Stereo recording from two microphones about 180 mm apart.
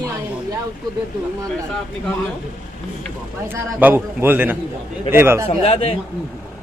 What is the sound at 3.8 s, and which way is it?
A man's voice, 10° right (ahead or behind).